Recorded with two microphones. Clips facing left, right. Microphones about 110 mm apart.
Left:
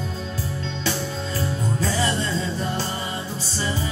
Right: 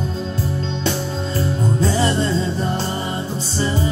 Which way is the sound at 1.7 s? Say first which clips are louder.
Right 5 dB; 25° right (ahead or behind).